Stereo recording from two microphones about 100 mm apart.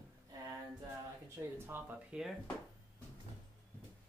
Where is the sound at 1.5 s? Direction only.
20° right (ahead or behind).